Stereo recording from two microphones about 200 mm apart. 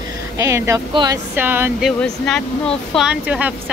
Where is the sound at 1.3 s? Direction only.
10° right (ahead or behind).